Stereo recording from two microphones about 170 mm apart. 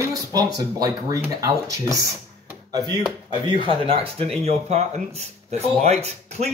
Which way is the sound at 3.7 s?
35° right (ahead or behind).